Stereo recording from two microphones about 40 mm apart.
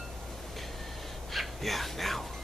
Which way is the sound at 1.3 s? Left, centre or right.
Centre.